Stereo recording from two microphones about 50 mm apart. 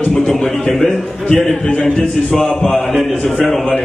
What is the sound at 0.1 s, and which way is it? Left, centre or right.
Speech, centre.